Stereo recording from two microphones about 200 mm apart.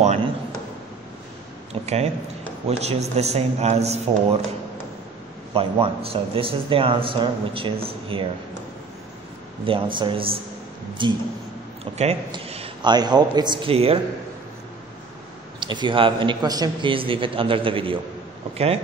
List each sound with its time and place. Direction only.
0.0 s a sound: 35° right (ahead or behind)
1.7 s speech: 35° right (ahead or behind)
5.5 s a man's voice: 30° right (ahead or behind)
9.7 s a man's voice: 25° right (ahead or behind)
15.6 s a man's voice: 25° right (ahead or behind)